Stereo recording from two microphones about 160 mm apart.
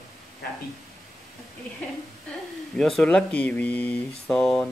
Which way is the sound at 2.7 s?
Centre (ahead or behind).